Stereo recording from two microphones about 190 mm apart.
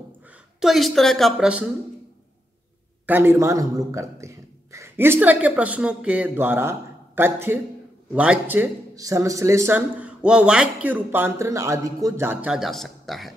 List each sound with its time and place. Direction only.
0.6 s a woman's voice: centre (ahead or behind)
3.1 s a man's voice: 10° right (ahead or behind)